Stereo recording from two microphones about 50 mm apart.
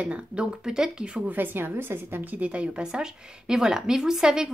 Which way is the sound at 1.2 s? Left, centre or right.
Right.